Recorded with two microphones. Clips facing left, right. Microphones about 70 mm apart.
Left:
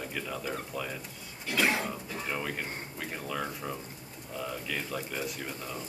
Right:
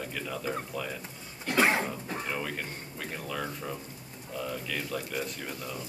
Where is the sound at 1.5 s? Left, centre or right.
Right.